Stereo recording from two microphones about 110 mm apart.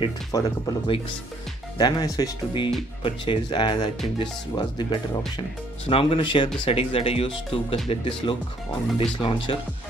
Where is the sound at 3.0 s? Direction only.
45° left (ahead or behind).